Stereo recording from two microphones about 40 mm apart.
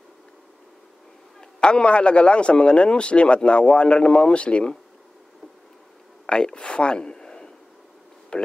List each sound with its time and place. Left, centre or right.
1.6 s speech: left
6.2 s a man's voice: left
8.3 s a sound: left